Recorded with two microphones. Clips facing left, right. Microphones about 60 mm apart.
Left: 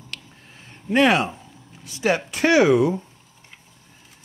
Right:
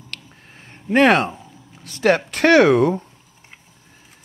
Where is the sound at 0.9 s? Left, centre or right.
Right.